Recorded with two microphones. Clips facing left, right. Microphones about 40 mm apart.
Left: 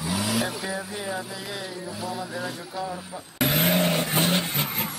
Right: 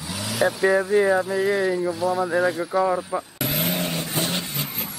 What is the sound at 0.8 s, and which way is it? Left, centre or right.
Speech, right.